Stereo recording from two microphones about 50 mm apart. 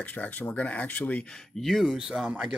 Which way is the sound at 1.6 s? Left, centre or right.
Centre.